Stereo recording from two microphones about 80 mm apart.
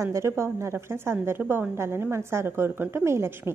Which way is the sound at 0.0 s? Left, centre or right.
Right.